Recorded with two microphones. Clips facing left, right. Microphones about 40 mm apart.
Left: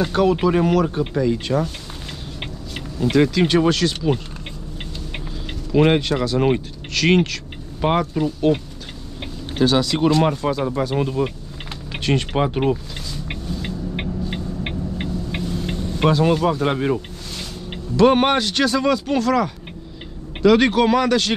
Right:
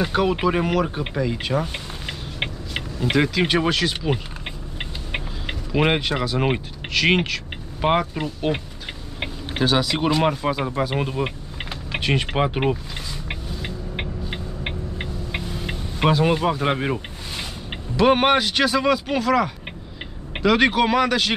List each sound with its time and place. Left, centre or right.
0.0 s speech: centre
5.7 s speech: centre
11.9 s vehicle: centre
16.3 s speech: centre